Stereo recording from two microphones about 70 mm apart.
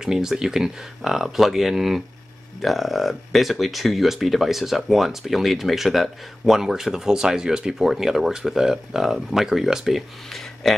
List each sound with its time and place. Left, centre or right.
0.0 s speech: centre